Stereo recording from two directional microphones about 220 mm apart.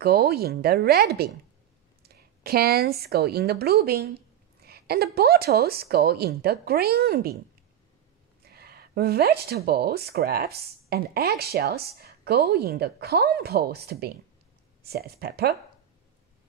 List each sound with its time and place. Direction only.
0.0 s speech: 45° right (ahead or behind)
8.5 s speech: 45° right (ahead or behind)